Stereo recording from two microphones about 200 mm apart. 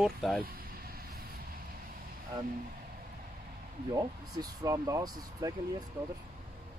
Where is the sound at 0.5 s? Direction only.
50° right (ahead or behind).